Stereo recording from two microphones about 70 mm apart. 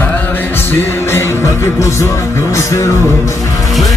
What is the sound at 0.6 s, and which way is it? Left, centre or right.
Music, left.